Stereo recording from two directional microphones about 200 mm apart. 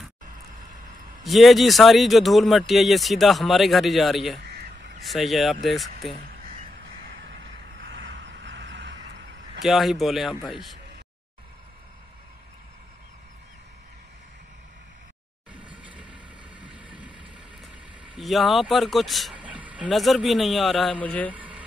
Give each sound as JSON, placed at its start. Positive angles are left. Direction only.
{"t": 1.2, "sound": "speech", "side_deg": 0}
{"t": 4.5, "sound": "crow", "side_deg": -55}
{"t": 5.0, "sound": "speech", "side_deg": 0}
{"t": 7.8, "sound": "vehicle", "side_deg": -65}
{"t": 9.6, "sound": "speech", "side_deg": 0}
{"t": 15.8, "sound": "vehicle", "side_deg": -5}
{"t": 18.1, "sound": "speech", "side_deg": 0}
{"t": 21.3, "sound": "a sound", "side_deg": -5}